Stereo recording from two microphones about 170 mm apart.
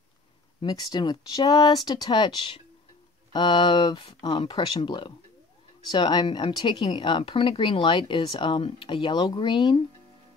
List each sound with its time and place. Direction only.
0.6 s speech: 25° left (ahead or behind)